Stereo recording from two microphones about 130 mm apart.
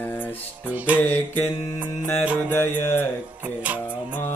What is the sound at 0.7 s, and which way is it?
Music, 10° right (ahead or behind).